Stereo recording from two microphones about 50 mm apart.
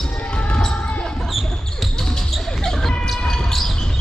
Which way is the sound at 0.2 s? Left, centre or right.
Left.